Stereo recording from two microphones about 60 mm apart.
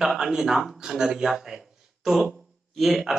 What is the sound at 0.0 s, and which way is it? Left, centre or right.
A man's voice, centre.